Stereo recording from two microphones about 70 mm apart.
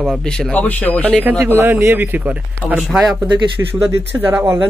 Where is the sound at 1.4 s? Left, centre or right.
Right.